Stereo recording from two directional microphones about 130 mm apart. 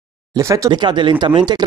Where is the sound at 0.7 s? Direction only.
35° right (ahead or behind).